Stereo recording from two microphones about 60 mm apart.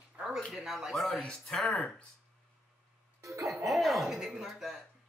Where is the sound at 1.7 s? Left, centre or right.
Left.